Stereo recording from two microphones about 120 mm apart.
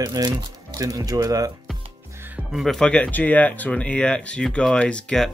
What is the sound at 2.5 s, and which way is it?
Speech, centre (ahead or behind).